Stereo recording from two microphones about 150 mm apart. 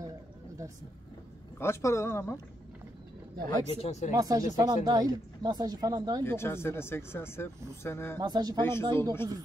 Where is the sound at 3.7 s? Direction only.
45° left (ahead or behind).